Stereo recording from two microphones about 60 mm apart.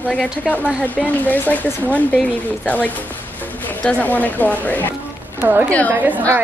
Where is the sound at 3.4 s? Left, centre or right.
Left.